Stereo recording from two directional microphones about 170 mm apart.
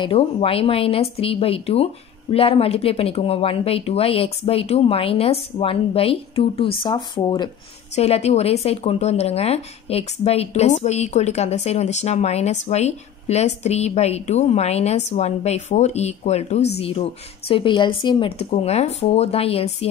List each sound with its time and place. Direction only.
0.0 s speech: 35° left (ahead or behind)
7.9 s speech: 35° left (ahead or behind)